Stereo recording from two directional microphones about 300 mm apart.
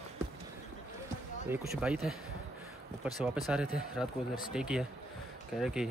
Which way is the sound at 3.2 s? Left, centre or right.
Centre.